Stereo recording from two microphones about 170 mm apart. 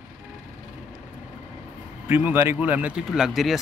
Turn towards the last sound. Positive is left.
turn(degrees=0)  # may be behind; listen again after turning